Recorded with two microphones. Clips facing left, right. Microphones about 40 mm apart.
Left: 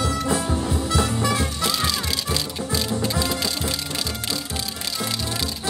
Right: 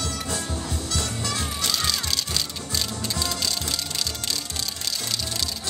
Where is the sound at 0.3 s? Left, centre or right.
Centre.